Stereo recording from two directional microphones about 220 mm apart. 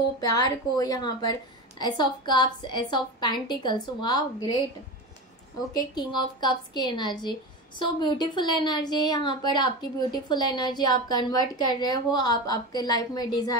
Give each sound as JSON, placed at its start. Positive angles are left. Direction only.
{"t": 0.2, "sound": "a woman's voice", "side_deg": 15}
{"t": 5.8, "sound": "a woman's voice", "side_deg": 20}